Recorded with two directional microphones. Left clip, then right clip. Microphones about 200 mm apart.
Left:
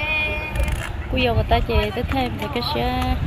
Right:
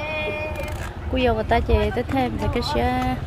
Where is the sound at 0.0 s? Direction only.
35° left (ahead or behind).